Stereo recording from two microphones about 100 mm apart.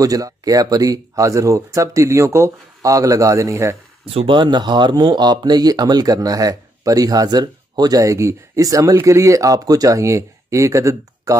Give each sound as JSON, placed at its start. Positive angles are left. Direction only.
{"t": 0.0, "sound": "speech", "side_deg": -35}
{"t": 4.0, "sound": "speech", "side_deg": -75}
{"t": 4.4, "sound": "speech", "side_deg": -50}